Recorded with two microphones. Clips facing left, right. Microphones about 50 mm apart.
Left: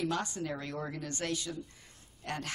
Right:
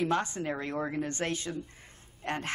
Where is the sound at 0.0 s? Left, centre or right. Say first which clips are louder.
Right 4 dB; right.